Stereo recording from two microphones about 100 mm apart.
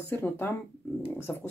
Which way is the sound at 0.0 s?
25° left (ahead or behind).